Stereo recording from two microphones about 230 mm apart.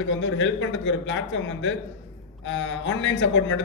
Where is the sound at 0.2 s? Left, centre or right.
Left.